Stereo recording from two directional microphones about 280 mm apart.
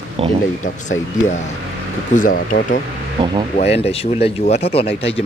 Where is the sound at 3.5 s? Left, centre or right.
Left.